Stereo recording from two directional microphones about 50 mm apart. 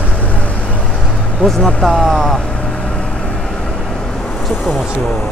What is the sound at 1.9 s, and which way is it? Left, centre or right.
Speech, centre.